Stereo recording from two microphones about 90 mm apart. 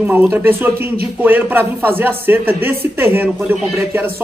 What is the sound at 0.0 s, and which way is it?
A man's voice, 20° right (ahead or behind).